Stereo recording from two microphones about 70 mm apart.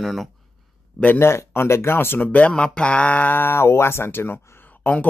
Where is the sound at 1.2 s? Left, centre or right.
Left.